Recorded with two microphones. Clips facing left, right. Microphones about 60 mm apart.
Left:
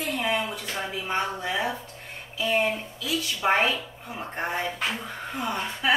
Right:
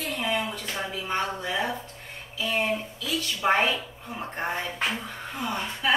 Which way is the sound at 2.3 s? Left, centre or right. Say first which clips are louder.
Left 2 dB; centre.